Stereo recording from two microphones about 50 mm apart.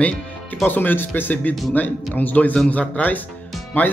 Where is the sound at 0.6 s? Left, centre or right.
Left.